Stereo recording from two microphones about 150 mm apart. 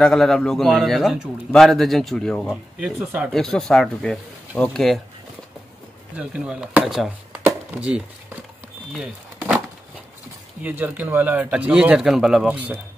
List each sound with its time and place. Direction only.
0.0 s a man's voice: 5° left (ahead or behind)
2.5 s speech: 5° right (ahead or behind)
3.3 s a man's voice: 5° left (ahead or behind)
6.1 s a man's voice: 5° right (ahead or behind)
7.4 s a sound: 10° right (ahead or behind)
8.9 s speech: 5° right (ahead or behind)
10.6 s speech: 10° right (ahead or behind)